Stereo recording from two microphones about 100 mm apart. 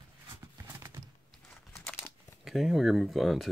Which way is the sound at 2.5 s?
Centre (ahead or behind).